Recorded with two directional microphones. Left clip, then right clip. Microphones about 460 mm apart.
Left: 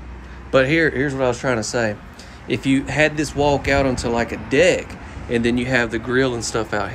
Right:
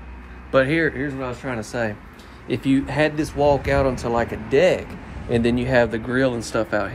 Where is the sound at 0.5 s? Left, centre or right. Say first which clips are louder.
Left 2 dB; centre.